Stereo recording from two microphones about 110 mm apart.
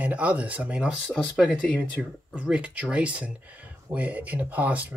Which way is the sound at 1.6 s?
10° left (ahead or behind).